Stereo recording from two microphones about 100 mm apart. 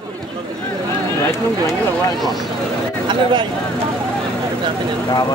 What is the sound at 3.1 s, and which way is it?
Speech, 55° right (ahead or behind).